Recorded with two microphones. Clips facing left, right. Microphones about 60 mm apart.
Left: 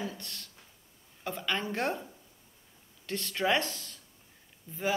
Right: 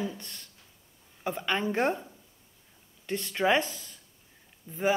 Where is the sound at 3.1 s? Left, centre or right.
Centre.